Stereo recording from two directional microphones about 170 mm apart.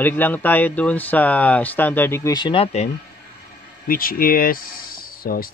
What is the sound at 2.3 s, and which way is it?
Speech, 30° left (ahead or behind).